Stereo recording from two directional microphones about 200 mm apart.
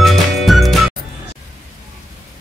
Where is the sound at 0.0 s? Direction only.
Centre (ahead or behind).